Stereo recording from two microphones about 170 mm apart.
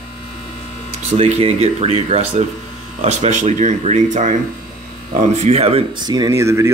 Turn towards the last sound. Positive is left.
turn(degrees=-15)  # may be behind; listen again after turning